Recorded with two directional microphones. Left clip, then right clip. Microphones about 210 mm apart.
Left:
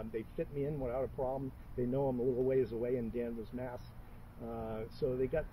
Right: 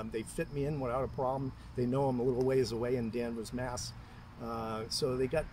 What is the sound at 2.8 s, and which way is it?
Speech, 40° right (ahead or behind).